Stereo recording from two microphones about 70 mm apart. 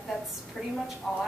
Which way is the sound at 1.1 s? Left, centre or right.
Centre.